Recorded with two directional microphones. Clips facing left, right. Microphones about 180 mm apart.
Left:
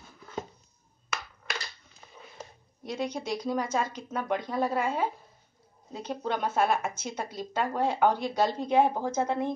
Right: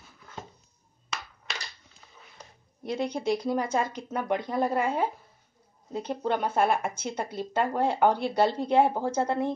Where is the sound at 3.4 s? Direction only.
10° right (ahead or behind).